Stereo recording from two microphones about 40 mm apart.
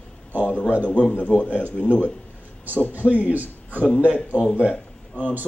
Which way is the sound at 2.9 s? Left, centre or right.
Right.